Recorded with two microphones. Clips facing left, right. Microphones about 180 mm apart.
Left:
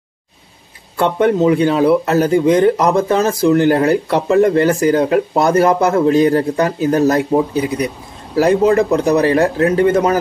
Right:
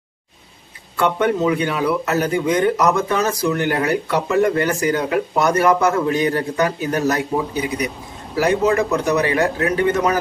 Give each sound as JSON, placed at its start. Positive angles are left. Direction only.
{"t": 0.9, "sound": "speech", "side_deg": 30}
{"t": 8.4, "sound": "speech", "side_deg": 35}